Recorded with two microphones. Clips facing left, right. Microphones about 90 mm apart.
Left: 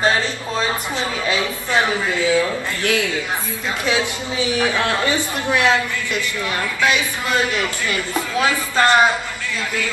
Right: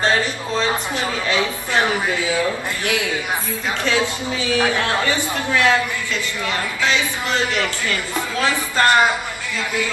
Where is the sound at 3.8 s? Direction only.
20° left (ahead or behind).